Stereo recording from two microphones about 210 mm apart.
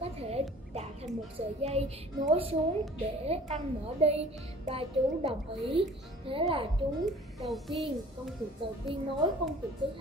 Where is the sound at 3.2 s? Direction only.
30° right (ahead or behind).